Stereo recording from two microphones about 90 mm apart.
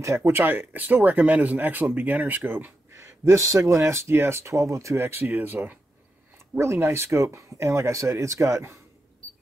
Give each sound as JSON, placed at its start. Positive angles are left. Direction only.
{"t": 0.0, "sound": "speech", "side_deg": -30}